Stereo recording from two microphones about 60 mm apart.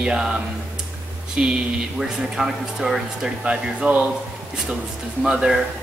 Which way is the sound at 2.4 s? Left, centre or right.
Centre.